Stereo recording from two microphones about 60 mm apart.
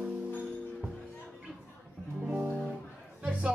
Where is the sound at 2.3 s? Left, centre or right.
Centre.